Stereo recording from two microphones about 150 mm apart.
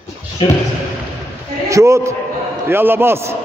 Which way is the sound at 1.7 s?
20° right (ahead or behind).